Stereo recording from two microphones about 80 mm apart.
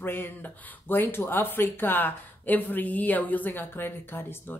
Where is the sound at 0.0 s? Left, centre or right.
Left.